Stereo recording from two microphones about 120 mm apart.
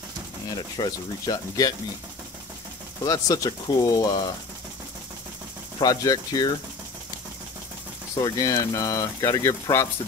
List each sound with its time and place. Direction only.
0.7 s speech: 35° left (ahead or behind)
3.1 s speech: 30° left (ahead or behind)
5.8 s speech: 35° left (ahead or behind)
8.2 s speech: 30° left (ahead or behind)